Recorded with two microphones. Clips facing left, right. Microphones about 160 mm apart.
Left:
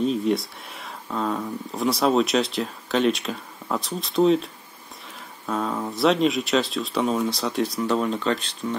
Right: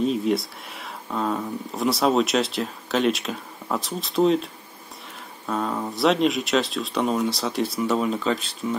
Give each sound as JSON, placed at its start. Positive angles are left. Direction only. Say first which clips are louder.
{"t": 0.0, "sound": "speech", "louder": "even", "side_deg": 0}
{"t": 5.5, "sound": "speech", "louder": "even", "side_deg": 0}